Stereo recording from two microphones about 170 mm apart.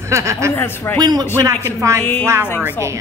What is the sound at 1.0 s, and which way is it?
A woman's voice, 25° right (ahead or behind).